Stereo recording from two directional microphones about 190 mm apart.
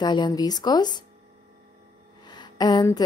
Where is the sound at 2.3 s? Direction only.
20° left (ahead or behind).